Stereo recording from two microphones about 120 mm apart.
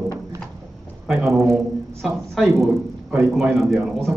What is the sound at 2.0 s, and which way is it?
A man's voice, centre (ahead or behind).